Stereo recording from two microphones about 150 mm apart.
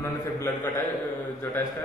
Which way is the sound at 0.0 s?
20° left (ahead or behind).